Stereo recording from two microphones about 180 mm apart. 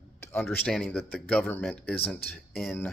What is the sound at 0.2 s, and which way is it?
Speech, 10° left (ahead or behind).